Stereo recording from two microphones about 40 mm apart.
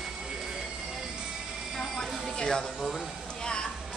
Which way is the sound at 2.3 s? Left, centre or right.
Centre.